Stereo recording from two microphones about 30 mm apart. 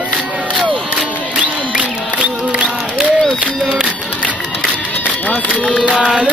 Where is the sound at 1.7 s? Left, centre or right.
Right.